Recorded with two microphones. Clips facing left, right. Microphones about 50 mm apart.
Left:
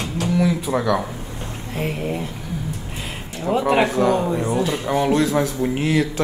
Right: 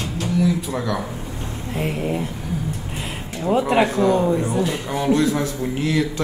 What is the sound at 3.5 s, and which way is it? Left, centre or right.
Speech, centre.